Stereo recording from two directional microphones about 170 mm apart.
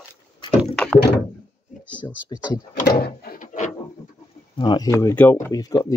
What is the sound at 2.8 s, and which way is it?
Drawer open or close, 65° left (ahead or behind).